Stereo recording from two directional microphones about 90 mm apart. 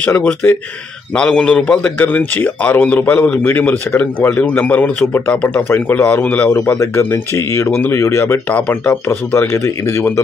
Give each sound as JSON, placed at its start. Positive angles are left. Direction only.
{"t": 0.0, "sound": "a man's voice", "side_deg": 20}
{"t": 1.1, "sound": "a man's voice", "side_deg": 10}
{"t": 5.3, "sound": "a man's voice", "side_deg": 10}
{"t": 6.8, "sound": "speech", "side_deg": 30}
{"t": 8.5, "sound": "a man's voice", "side_deg": 20}